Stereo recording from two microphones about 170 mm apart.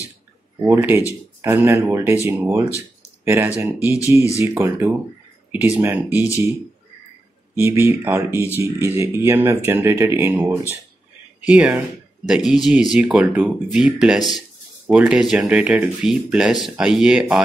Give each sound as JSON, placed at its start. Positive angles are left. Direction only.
{"t": 0.6, "sound": "speech", "side_deg": -15}
{"t": 3.8, "sound": "speech", "side_deg": 20}
{"t": 4.4, "sound": "speech", "side_deg": -15}
{"t": 7.5, "sound": "speech", "side_deg": -15}